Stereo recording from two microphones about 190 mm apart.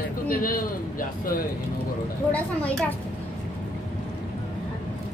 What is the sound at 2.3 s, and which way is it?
Speech, 5° left (ahead or behind).